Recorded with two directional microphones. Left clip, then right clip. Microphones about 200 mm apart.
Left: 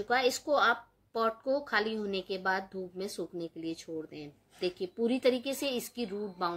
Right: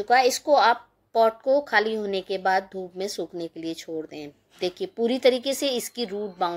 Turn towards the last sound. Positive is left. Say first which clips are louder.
# right 7 dB
turn(degrees=-5)  # may be behind; listen again after turning